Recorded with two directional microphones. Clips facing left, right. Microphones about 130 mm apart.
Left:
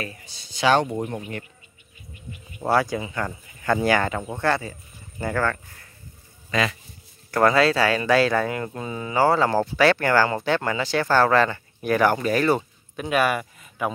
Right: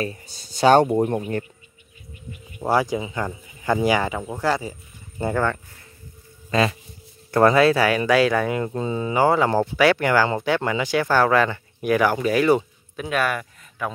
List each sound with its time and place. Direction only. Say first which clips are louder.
0.0 s speech: right 6 dB; 35° right (ahead or behind)
2.6 s speech: right 1 dB; 15° right (ahead or behind)
6.5 s a man's voice: right 4 dB; 30° right (ahead or behind); by 12.6 s 10° right (ahead or behind)
12.9 s speech: left 2 dB; 5° left (ahead or behind)